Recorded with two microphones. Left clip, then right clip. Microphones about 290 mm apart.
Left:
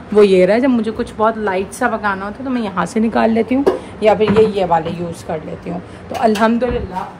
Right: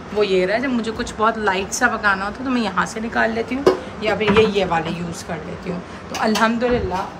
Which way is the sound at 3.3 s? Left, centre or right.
Centre.